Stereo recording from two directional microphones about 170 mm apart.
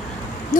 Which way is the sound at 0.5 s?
50° left (ahead or behind).